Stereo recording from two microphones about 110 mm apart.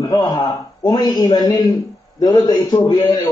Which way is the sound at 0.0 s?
35° left (ahead or behind).